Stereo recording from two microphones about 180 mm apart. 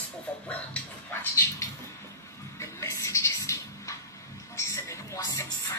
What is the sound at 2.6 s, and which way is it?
Television, 15° left (ahead or behind).